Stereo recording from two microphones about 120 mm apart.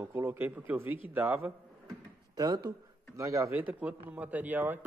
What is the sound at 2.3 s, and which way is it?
Speech, 30° right (ahead or behind).